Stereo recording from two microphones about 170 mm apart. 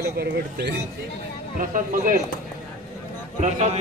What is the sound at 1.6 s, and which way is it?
Speech, 55° right (ahead or behind).